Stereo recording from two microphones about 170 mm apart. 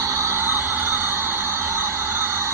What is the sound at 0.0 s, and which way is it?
Music, 15° right (ahead or behind).